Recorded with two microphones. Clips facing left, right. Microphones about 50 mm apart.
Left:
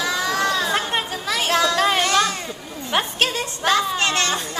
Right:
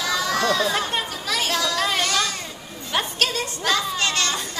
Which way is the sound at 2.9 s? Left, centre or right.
Left.